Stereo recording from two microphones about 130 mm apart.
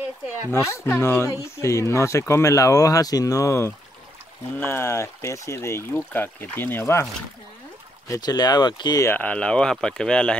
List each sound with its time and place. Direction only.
0.5 s speech: 20° left (ahead or behind)
8.1 s speech: 30° left (ahead or behind)
9.0 s speech: 15° left (ahead or behind)